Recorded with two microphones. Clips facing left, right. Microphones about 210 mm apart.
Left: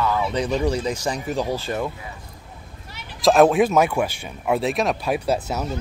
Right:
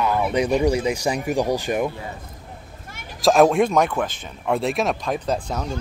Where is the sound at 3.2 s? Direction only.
Centre (ahead or behind).